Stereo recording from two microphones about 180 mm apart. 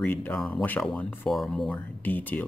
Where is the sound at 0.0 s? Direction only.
10° left (ahead or behind).